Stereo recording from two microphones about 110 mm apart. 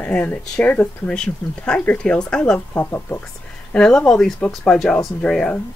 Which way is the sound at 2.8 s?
20° left (ahead or behind).